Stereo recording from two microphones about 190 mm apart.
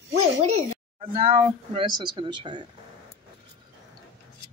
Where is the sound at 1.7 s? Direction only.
25° right (ahead or behind).